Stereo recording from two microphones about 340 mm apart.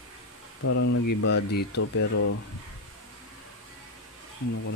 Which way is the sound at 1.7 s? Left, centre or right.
Left.